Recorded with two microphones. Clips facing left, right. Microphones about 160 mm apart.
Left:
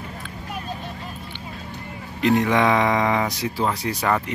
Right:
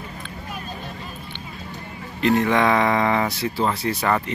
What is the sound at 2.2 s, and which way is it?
Speech, 15° left (ahead or behind).